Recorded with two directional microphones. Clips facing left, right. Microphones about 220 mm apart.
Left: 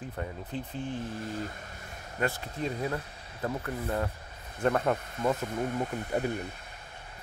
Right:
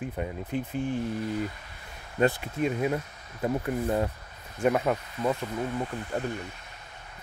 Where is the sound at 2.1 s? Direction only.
20° right (ahead or behind); by 5.4 s centre (ahead or behind).